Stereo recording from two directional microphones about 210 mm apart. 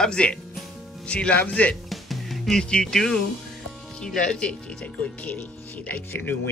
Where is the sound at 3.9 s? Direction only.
5° left (ahead or behind).